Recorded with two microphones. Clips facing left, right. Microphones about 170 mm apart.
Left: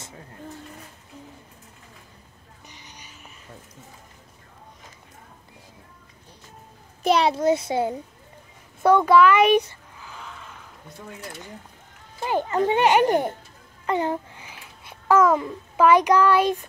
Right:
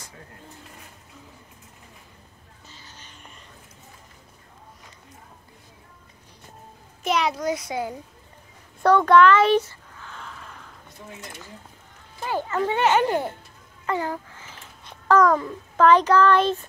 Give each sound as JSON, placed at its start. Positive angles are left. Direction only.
{"t": 2.7, "sound": "music", "side_deg": 15}
{"t": 7.0, "sound": "a child's voice", "side_deg": 30}
{"t": 8.8, "sound": "a child's voice", "side_deg": 10}
{"t": 9.9, "sound": "a sound", "side_deg": 5}
{"t": 12.2, "sound": "a child's voice", "side_deg": 20}
{"t": 13.8, "sound": "babbling", "side_deg": 20}
{"t": 15.4, "sound": "a child's voice", "side_deg": 10}